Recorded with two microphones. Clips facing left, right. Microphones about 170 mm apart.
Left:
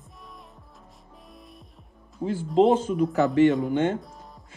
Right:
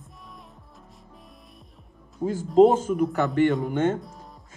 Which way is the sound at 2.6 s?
45° right (ahead or behind).